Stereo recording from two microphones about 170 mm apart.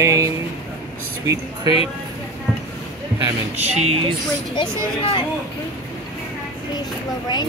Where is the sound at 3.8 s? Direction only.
35° right (ahead or behind).